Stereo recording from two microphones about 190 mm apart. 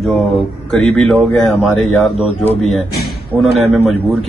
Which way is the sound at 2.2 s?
35° left (ahead or behind).